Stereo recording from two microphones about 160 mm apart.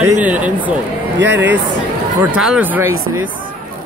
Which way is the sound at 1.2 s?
90° right.